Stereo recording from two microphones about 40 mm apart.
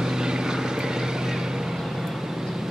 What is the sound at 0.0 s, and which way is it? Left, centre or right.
Vehicle, centre.